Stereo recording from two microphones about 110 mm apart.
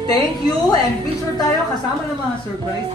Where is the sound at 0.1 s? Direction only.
40° left (ahead or behind).